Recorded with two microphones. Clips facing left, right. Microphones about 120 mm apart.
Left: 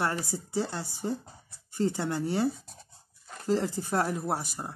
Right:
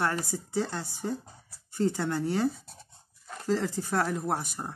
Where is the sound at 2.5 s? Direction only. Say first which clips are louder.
Left 2 dB; centre (ahead or behind).